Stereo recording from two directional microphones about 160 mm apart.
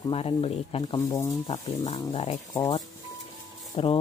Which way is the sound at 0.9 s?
20° left (ahead or behind).